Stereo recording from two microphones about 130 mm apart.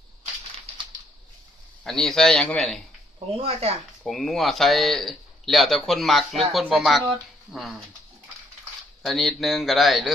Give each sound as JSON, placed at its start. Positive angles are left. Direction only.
{"t": 1.9, "sound": "speech", "side_deg": 5}
{"t": 3.3, "sound": "speech", "side_deg": -55}
{"t": 4.0, "sound": "speech", "side_deg": 0}
{"t": 9.0, "sound": "speech", "side_deg": 0}